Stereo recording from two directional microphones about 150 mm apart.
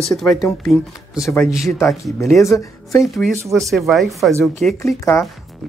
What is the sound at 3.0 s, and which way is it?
Speech, centre (ahead or behind).